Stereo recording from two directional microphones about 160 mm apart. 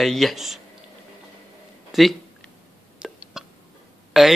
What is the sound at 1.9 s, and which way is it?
Speech, centre (ahead or behind).